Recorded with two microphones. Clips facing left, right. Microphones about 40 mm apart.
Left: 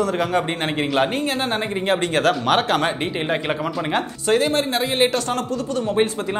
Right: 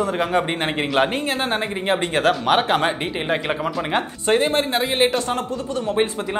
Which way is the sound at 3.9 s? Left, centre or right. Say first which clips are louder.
Even; right.